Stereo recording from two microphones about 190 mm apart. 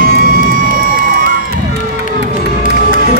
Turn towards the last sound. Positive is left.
turn(degrees=-45)  # may be behind; listen again after turning